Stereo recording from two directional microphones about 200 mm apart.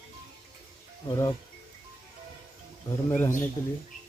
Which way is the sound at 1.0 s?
20° left (ahead or behind).